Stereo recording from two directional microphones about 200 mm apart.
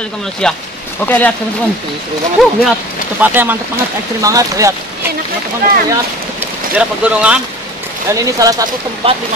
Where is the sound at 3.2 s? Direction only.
10° right (ahead or behind).